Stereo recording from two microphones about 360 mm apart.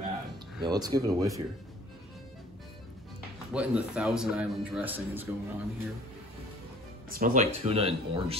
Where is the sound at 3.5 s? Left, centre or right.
Centre.